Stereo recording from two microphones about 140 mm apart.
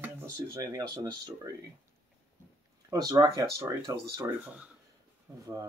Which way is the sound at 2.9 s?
25° right (ahead or behind).